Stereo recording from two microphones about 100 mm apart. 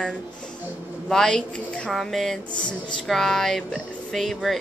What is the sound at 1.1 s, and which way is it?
Speech, 5° left (ahead or behind).